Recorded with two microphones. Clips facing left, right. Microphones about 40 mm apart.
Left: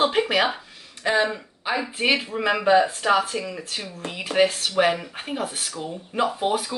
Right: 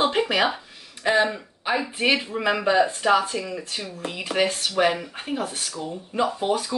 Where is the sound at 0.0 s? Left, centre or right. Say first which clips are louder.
Left 1 dB; centre.